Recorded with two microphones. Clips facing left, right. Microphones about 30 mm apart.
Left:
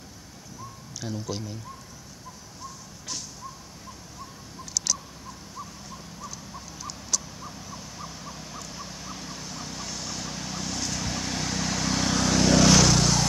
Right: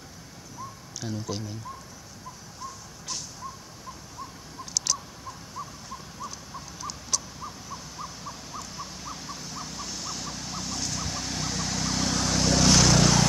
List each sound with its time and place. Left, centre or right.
0.9 s speech: centre
8.7 s vehicle: centre; by 12.6 s left
12.6 s vehicle: centre
13.0 s vehicle: right